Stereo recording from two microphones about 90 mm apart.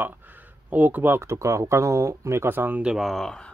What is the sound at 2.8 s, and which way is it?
Speech, 5° right (ahead or behind).